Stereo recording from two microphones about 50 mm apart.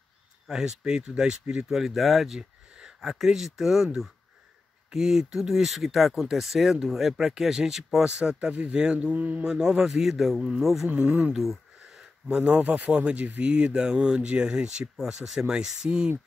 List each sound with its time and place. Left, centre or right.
0.5 s speech: centre
1.7 s speech: centre; by 9.4 s right
9.4 s speech: centre
11.3 s a sound: centre
12.3 s speech: right